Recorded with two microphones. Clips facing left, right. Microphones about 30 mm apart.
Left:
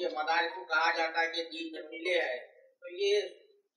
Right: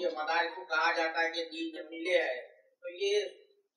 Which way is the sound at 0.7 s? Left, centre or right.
Centre.